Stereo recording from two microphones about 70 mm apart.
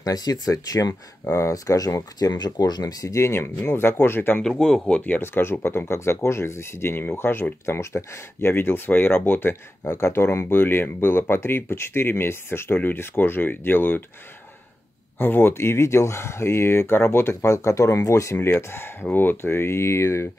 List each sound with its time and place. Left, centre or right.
0.0 s speech: left
2.1 s speech: left
4.4 s speech: centre; by 9.6 s left
9.8 s speech: left
15.1 s speech: left